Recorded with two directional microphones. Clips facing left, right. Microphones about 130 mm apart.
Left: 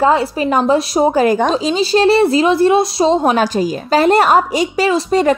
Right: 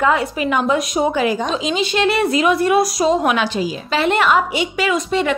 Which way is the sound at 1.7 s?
35° left (ahead or behind).